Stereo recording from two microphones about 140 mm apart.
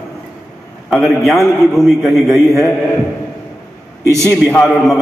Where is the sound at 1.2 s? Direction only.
20° left (ahead or behind).